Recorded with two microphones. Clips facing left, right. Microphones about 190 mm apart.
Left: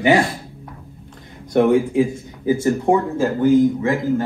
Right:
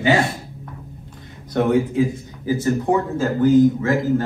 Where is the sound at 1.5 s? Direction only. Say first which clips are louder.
Left 3 dB; 20° left (ahead or behind).